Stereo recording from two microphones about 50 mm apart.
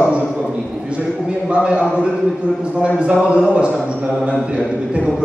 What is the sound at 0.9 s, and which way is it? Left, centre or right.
A man's voice, right.